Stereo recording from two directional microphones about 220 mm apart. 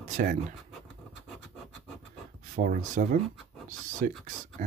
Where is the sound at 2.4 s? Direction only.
35° right (ahead or behind).